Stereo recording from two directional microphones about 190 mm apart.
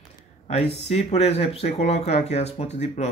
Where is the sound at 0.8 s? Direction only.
35° left (ahead or behind).